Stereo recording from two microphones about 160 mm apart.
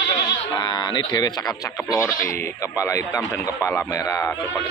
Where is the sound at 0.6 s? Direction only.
25° left (ahead or behind).